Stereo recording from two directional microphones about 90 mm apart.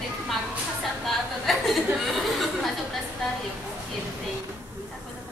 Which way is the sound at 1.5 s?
Centre (ahead or behind).